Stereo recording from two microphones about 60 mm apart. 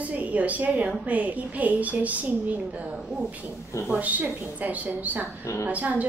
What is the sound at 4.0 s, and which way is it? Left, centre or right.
A woman's voice, right.